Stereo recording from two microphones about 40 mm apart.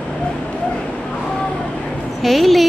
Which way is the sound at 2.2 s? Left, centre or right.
Centre.